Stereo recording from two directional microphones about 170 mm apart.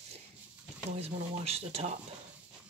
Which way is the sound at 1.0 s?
40° right (ahead or behind).